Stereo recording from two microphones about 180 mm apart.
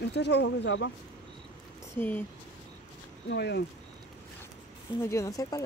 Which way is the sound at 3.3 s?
70° left (ahead or behind).